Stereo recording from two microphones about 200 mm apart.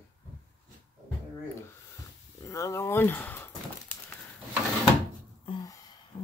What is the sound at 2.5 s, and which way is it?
Speech, 15° left (ahead or behind).